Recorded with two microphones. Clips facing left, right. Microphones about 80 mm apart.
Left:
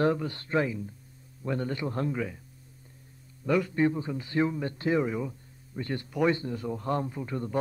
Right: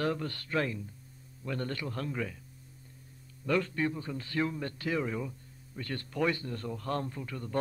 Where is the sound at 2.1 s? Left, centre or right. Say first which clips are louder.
Left 4 dB; centre.